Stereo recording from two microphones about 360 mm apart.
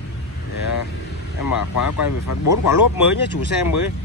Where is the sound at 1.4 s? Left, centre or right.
Left.